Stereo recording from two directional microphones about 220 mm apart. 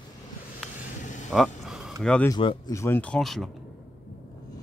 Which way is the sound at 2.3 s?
20° left (ahead or behind).